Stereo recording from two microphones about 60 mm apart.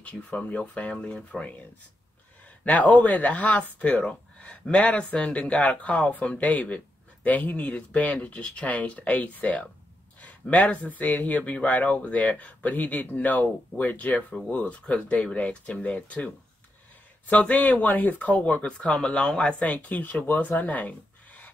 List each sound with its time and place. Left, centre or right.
0.0 s speech: left
2.6 s speech: left
17.3 s speech: left